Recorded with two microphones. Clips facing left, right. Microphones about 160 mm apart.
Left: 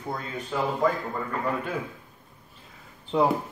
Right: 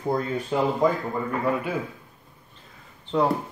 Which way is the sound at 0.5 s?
20° right (ahead or behind).